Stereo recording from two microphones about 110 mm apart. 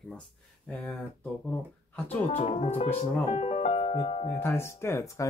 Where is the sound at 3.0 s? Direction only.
80° left; by 4.4 s 65° left (ahead or behind).